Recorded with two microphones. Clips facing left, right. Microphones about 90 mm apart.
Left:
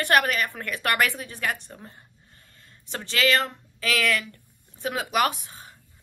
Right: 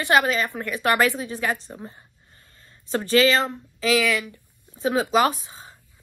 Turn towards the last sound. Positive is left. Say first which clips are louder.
# right 3 dB
turn(degrees=-20)  # may be behind; listen again after turning